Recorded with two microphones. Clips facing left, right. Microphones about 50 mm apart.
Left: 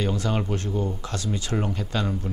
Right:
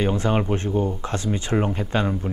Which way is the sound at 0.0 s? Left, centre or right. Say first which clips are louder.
Right 4 dB; right.